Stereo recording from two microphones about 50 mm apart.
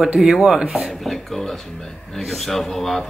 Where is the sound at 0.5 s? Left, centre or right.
Right.